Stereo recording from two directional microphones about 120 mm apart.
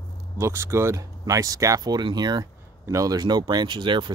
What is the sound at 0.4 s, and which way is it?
Speech, 20° right (ahead or behind).